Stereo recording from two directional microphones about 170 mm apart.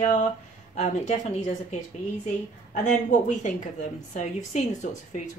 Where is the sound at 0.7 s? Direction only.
45° left (ahead or behind).